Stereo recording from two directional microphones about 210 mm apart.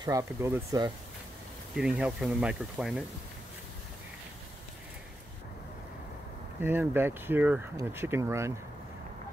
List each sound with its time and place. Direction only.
0.0 s speech: 15° right (ahead or behind)
1.8 s speech: 5° right (ahead or behind)
6.6 s speech: 10° right (ahead or behind)